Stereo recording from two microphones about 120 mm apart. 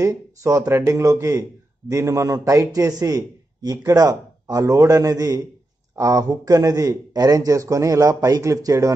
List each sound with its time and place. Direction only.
0.0 s a man's voice: 25° right (ahead or behind)